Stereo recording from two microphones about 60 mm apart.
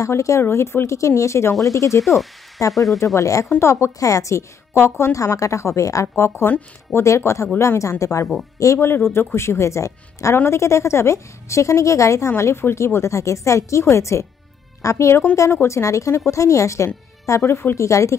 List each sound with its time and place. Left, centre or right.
0.0 s a woman's voice: left
0.4 s a woman's voice: left
3.4 s a woman's voice: left
4.0 s a woman's voice: left
5.1 s a woman's voice: left
7.8 s a woman's voice: left
8.7 s a woman's voice: left
10.3 s a woman's voice: left
12.3 s a woman's voice: left